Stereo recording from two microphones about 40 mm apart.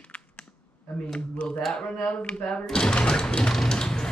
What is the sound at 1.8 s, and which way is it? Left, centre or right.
Speech, left.